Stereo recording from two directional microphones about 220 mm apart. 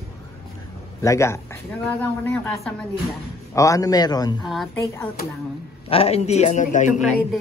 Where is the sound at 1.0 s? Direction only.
15° left (ahead or behind).